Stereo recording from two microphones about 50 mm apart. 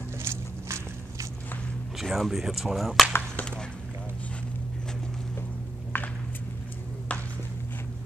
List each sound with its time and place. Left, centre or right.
0.2 s walk: right
2.0 s speech: centre
3.1 s chop: left
5.9 s a sound: left